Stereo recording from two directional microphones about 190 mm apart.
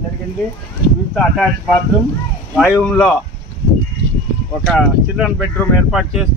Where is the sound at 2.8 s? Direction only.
5° left (ahead or behind).